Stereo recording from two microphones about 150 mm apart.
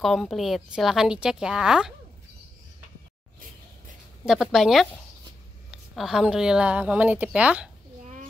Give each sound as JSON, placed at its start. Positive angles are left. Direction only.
{"t": 0.0, "sound": "speech", "side_deg": 0}
{"t": 4.3, "sound": "a woman's voice", "side_deg": -5}
{"t": 8.0, "sound": "a sound", "side_deg": -55}